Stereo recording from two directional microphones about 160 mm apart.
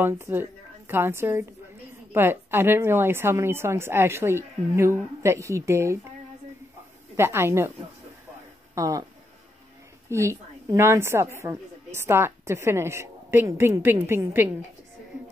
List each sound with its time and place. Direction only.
0.0 s a woman's voice: 15° right (ahead or behind)
7.2 s a woman's voice: 15° right (ahead or behind)
8.7 s speech: 20° right (ahead or behind)
10.0 s a woman's voice: 20° right (ahead or behind)